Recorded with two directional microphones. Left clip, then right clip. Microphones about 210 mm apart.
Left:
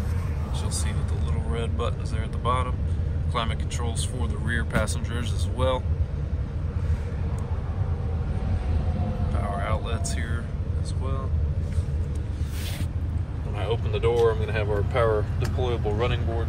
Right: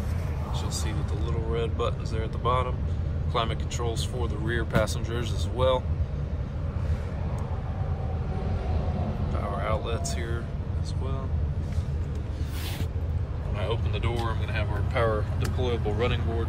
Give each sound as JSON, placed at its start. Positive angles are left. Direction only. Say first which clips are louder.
{"t": 1.5, "sound": "speech", "louder": "right 2 dB", "side_deg": -20}
{"t": 9.3, "sound": "music", "louder": "even", "side_deg": -20}
{"t": 13.6, "sound": "speech", "louder": "left 4 dB", "side_deg": 5}